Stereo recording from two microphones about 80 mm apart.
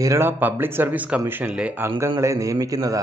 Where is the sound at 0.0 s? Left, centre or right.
Right; by 1.8 s centre.